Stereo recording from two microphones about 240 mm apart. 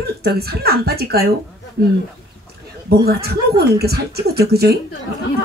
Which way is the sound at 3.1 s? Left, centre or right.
Right.